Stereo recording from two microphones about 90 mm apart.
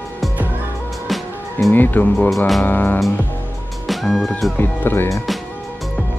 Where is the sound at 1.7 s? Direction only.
20° left (ahead or behind).